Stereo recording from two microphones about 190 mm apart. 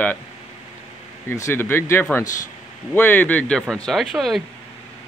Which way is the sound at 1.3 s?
15° left (ahead or behind).